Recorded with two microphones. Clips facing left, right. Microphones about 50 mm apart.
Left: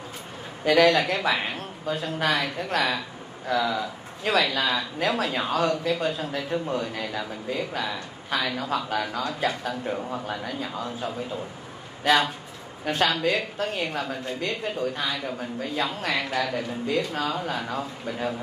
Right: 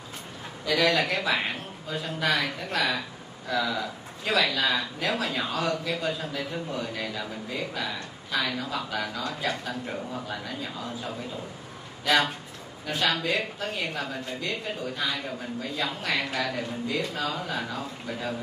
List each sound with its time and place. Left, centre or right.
0.7 s a woman's voice: left
12.8 s a woman's voice: left